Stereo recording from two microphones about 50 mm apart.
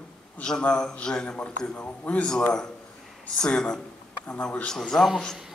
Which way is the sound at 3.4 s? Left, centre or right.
Centre.